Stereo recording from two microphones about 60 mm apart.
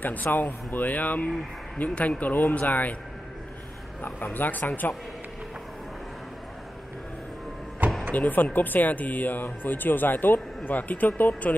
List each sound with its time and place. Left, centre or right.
0.0 s speech: left
4.0 s speech: left
8.1 s speech: left